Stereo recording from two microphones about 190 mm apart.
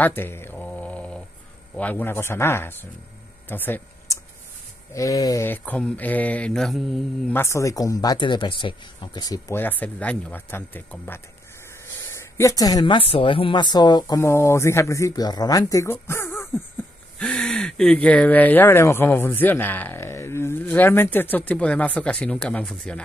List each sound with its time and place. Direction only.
0.0 s a sound: 10° left (ahead or behind)
1.8 s speech: 10° left (ahead or behind)
3.4 s a sound: 10° left (ahead or behind)
4.9 s speech: 20° left (ahead or behind); by 7.3 s centre (ahead or behind)
7.3 s speech: 15° left (ahead or behind)
17.2 s speech: centre (ahead or behind)